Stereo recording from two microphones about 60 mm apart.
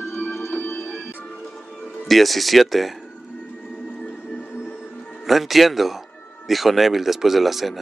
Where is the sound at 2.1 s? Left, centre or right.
Centre.